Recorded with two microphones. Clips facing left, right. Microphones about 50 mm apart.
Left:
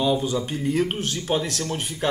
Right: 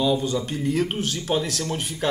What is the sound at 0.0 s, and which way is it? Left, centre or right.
Speech, centre.